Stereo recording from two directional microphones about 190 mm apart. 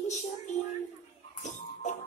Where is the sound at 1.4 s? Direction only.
40° left (ahead or behind).